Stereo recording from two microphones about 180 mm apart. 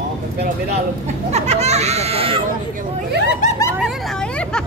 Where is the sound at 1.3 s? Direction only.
40° right (ahead or behind).